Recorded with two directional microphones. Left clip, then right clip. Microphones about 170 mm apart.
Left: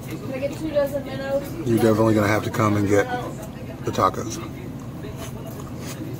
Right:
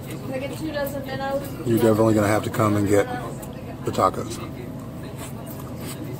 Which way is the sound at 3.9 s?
5° left (ahead or behind).